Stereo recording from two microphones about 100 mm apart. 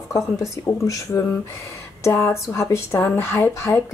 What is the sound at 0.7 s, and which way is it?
Speech, 30° left (ahead or behind).